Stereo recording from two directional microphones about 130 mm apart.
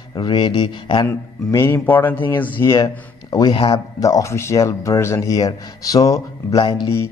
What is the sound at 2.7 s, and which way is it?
Speech, 30° left (ahead or behind).